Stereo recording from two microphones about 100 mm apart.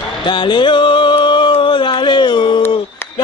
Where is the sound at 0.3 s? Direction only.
55° left (ahead or behind).